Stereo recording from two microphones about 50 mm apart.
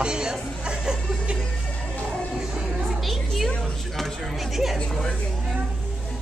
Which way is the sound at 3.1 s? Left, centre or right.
Centre.